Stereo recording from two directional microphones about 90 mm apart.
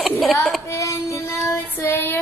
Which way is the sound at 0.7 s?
35° left (ahead or behind).